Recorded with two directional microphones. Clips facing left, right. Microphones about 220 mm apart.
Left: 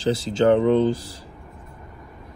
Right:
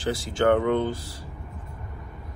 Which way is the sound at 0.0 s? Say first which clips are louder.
Left 4 dB; 25° left (ahead or behind).